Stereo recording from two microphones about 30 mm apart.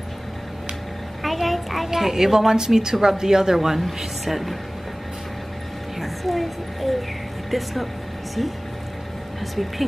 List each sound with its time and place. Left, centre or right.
1.2 s a sound: centre
1.9 s a woman's voice: centre
5.9 s a woman's voice: centre